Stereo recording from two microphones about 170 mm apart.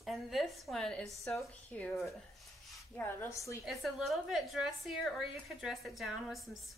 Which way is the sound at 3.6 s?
Centre (ahead or behind).